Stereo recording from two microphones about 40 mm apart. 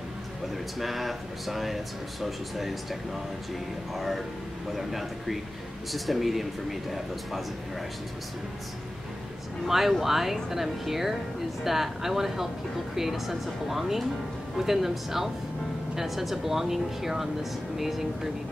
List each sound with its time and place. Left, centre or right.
0.7 s speech: centre
9.7 s speech: centre